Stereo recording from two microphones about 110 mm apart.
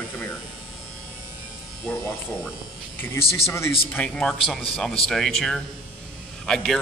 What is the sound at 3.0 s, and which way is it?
Speech, 25° left (ahead or behind).